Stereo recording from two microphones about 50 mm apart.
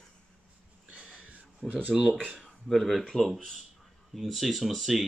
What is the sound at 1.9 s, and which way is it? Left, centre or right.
Speech, centre.